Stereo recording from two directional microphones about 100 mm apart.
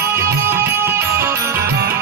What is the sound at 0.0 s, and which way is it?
Music, 25° right (ahead or behind).